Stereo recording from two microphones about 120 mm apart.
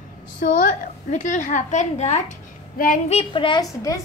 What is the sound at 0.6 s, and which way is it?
A woman's voice, 90° left.